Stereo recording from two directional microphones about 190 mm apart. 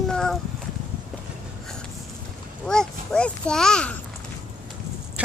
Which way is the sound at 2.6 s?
5° left (ahead or behind).